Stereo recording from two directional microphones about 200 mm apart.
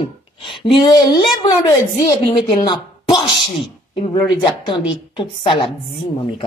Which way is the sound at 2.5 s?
25° left (ahead or behind).